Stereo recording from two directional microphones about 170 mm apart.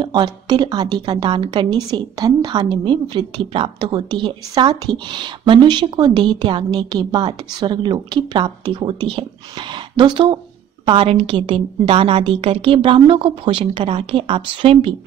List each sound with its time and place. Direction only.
0.0 s a woman's voice: 25° right (ahead or behind)